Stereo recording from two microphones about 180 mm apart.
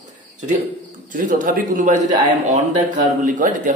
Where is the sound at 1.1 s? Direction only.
50° right (ahead or behind).